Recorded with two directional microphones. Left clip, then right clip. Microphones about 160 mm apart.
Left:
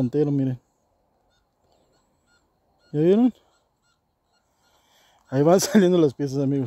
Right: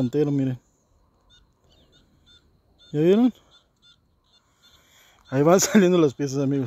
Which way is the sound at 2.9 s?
15° left (ahead or behind).